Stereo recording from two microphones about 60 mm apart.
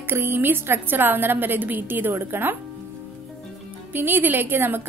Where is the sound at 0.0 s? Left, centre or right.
Right.